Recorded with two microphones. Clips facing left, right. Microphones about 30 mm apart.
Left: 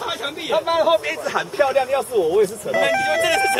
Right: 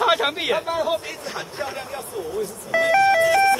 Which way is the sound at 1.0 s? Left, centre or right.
Left.